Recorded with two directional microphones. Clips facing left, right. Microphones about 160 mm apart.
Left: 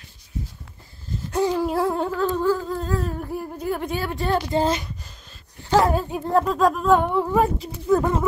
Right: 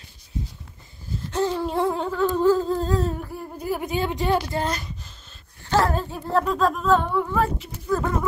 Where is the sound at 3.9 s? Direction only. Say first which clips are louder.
Right 4 dB; 20° right (ahead or behind).